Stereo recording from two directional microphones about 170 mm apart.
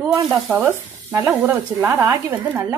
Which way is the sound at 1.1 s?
15° right (ahead or behind).